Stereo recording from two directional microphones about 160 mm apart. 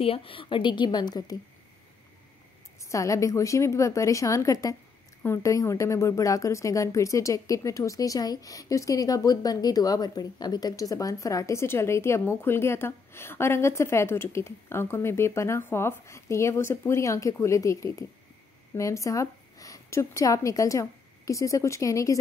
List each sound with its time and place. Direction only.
0.0 s speech: 35° left (ahead or behind)
2.8 s speech: 20° left (ahead or behind)